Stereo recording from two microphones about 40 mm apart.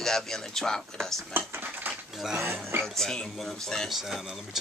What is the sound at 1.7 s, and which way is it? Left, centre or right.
Dishes, right.